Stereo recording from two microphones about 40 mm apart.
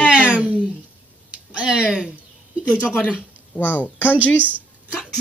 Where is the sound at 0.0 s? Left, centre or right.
Right.